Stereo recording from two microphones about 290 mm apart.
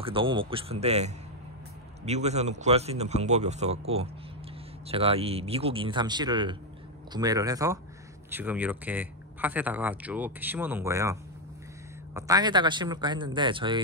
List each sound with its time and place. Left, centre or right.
0.0 s speech: centre